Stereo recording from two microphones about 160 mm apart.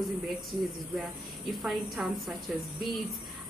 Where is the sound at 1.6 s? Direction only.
Centre (ahead or behind).